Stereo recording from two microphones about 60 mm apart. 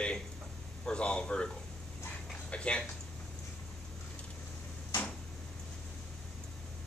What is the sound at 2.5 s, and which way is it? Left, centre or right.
Speech, centre.